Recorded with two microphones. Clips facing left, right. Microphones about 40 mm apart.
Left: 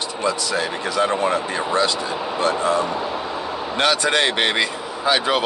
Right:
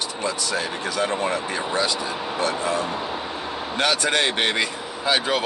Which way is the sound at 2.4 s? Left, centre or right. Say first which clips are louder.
Left 5 dB; left.